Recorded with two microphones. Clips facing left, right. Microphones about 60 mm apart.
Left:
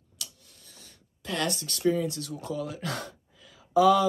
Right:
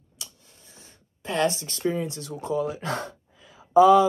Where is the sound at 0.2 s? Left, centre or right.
Right.